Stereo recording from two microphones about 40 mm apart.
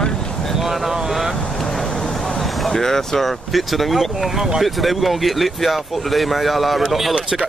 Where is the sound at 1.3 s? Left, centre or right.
Centre.